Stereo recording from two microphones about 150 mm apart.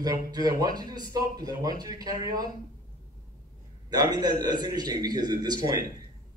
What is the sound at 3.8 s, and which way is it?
Speech, 30° right (ahead or behind).